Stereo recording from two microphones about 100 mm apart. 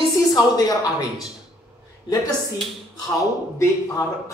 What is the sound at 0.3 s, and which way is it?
Speech, 40° left (ahead or behind).